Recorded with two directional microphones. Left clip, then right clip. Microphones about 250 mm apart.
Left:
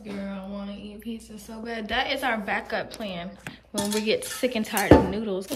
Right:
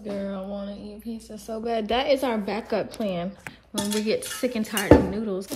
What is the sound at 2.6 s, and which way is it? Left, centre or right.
Speech, centre.